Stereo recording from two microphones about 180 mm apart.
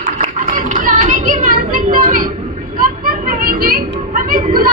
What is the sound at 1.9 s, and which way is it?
Vehicle, 50° right (ahead or behind).